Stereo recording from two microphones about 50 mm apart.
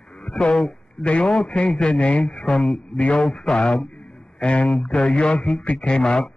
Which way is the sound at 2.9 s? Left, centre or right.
Left.